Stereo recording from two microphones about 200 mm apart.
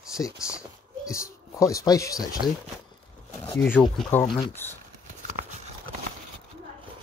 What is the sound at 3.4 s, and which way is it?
Speech, 10° left (ahead or behind).